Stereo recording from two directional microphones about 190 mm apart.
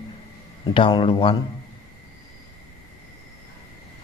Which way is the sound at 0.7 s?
25° left (ahead or behind).